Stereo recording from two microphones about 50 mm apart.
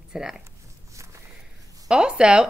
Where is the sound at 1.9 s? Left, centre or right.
Centre.